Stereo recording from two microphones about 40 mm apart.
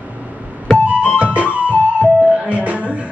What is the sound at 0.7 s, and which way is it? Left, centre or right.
Music, right.